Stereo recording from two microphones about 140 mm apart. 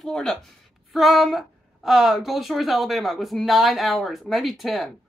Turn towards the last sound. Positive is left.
turn(degrees=0)  # may be behind; listen again after turning